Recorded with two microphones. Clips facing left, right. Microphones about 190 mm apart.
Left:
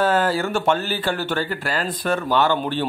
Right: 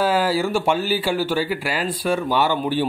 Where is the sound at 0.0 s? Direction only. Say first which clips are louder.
Even; 5° right (ahead or behind).